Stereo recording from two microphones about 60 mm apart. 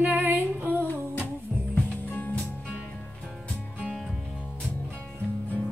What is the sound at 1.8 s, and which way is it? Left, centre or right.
Music, left.